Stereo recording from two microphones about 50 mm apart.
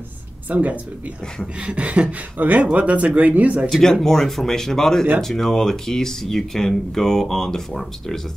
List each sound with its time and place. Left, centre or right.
0.5 s speech: right
3.6 s speech: centre